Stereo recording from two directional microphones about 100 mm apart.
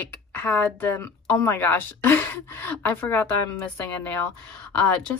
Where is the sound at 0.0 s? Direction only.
20° left (ahead or behind).